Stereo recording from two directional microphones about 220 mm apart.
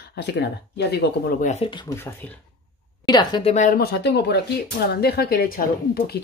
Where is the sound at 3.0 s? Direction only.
20° left (ahead or behind).